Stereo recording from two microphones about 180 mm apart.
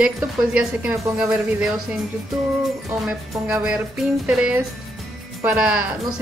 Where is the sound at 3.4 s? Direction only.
5° right (ahead or behind).